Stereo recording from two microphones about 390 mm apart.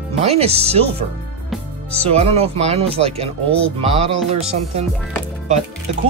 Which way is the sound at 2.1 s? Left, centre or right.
Centre.